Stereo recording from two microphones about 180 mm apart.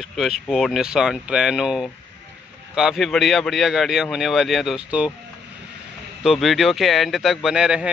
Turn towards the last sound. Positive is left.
turn(degrees=-5)  # may be behind; listen again after turning